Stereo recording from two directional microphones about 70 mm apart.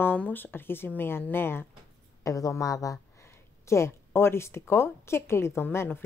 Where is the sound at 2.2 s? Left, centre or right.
Left.